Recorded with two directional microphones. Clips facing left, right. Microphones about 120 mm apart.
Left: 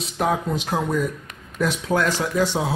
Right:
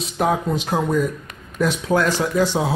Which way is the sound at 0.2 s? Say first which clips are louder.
Right 2 dB; 5° right (ahead or behind).